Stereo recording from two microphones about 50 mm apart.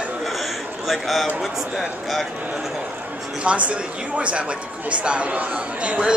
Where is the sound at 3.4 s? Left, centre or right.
Right.